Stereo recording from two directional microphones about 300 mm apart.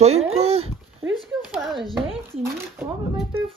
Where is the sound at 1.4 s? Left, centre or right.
Centre.